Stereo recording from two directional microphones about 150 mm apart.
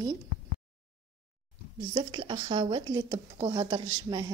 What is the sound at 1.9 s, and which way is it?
Speech, 30° right (ahead or behind).